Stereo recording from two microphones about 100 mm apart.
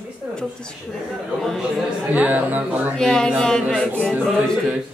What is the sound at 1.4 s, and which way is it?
Speech, 5° left (ahead or behind).